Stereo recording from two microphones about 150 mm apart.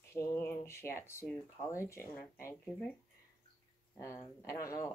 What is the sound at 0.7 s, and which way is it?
Speech, 15° left (ahead or behind).